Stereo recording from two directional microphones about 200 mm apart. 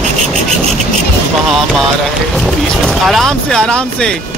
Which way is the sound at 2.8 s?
Centre (ahead or behind).